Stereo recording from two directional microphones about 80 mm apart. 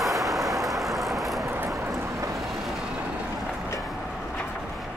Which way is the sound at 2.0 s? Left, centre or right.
Right.